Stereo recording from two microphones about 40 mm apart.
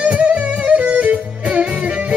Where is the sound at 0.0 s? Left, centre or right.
Right.